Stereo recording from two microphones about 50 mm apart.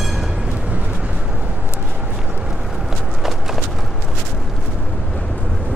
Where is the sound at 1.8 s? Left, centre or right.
Right.